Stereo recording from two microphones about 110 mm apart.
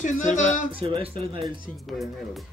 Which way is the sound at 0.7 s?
60° right (ahead or behind).